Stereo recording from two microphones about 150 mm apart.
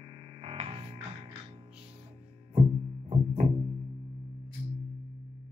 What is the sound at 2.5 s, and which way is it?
Music, 40° right (ahead or behind).